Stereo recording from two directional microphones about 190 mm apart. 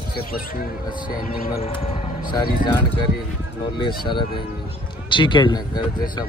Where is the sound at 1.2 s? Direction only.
50° left (ahead or behind).